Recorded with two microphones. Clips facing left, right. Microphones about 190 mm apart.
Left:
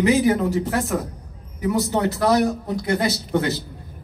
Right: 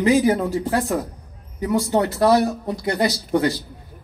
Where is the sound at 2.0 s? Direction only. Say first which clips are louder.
Even; 20° left (ahead or behind).